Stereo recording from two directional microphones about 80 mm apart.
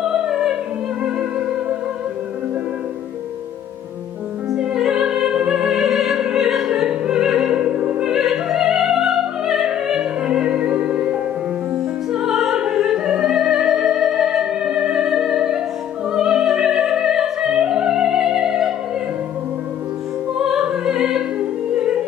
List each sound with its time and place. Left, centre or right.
0.0 s music: centre
4.5 s music: centre
16.1 s opera: centre
20.3 s opera: centre